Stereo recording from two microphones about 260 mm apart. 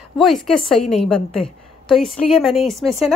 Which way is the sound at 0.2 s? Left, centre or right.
Centre.